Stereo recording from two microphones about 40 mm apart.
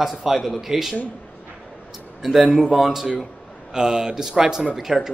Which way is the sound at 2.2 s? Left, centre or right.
Centre.